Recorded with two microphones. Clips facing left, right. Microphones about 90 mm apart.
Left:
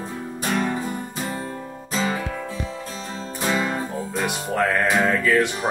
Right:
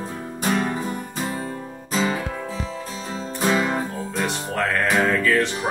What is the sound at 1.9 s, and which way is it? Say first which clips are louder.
Music: right 1 dB; 15° right (ahead or behind).